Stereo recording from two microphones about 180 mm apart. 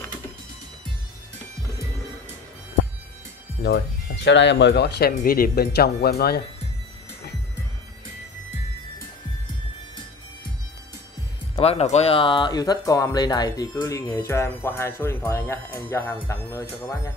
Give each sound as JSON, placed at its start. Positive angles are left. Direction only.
{"t": 3.6, "sound": "speech", "side_deg": 75}
{"t": 11.5, "sound": "speech", "side_deg": 35}